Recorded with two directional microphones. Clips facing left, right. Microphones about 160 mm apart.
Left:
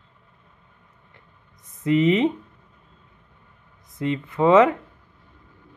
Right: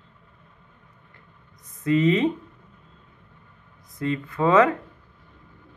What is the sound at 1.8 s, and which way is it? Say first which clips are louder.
Speech: left 1 dB; 20° left (ahead or behind).